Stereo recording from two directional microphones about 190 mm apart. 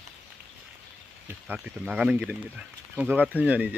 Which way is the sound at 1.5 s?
5° right (ahead or behind).